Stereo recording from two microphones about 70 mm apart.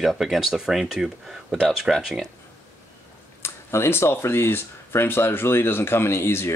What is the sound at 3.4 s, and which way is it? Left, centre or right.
Speech, left.